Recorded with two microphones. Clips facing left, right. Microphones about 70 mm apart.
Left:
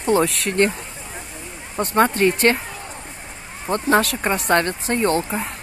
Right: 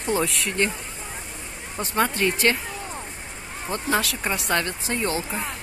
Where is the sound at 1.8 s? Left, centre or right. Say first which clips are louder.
Left 6 dB; left.